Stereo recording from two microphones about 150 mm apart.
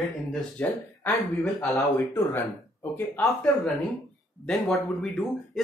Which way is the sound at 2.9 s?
15° left (ahead or behind).